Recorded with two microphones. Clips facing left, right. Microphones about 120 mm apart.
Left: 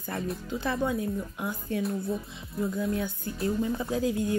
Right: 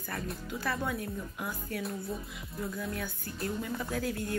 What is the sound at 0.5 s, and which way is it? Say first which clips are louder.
Speech: left 5 dB; 25° left (ahead or behind).